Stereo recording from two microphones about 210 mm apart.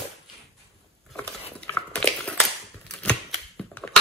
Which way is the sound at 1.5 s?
5° left (ahead or behind).